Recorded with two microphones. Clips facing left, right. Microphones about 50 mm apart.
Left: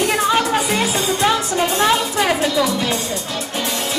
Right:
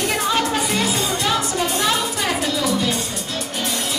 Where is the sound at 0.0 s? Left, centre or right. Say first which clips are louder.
Left 3 dB; centre.